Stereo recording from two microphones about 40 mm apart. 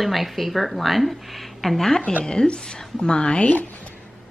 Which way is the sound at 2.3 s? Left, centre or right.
Left.